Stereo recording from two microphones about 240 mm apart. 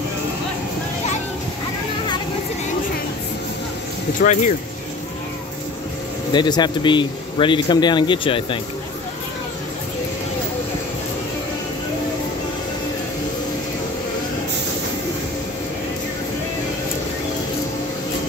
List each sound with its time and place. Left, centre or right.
4.2 s speech: left
6.3 s speech: centre